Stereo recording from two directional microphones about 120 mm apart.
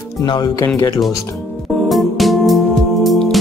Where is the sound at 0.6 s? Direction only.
20° left (ahead or behind).